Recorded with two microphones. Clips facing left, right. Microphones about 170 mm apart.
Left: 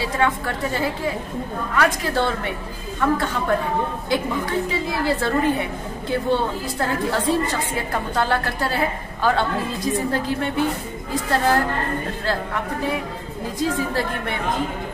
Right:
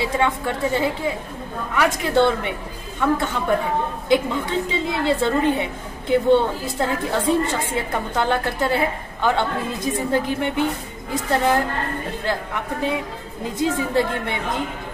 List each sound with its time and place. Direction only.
0.0 s a woman's voice: 20° right (ahead or behind)
13.6 s a woman's voice: 20° right (ahead or behind)